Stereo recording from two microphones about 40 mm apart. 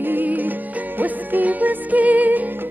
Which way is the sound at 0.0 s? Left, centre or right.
Right.